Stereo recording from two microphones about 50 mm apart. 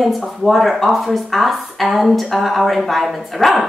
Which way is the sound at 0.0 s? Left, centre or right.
Centre.